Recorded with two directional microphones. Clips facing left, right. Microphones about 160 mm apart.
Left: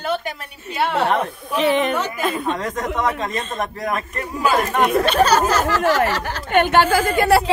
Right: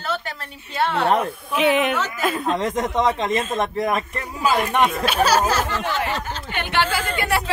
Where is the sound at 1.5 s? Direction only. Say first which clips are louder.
Left 1 dB; 5° right (ahead or behind).